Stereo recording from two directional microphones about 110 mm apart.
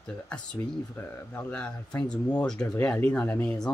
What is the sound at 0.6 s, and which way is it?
Speech, 20° left (ahead or behind).